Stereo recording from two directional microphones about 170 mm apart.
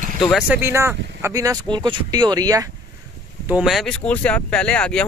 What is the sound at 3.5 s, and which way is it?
Speech, 5° right (ahead or behind).